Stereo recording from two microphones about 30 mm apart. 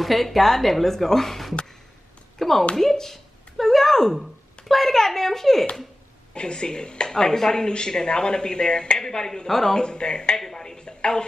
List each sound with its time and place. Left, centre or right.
0.0 s a woman's voice: centre
2.3 s a sound: centre
2.7 s speech: centre
3.5 s a sound: centre
4.2 s speech: centre
6.3 s speech: left
7.1 s speech: centre
9.8 s speech: left
10.3 s speech: centre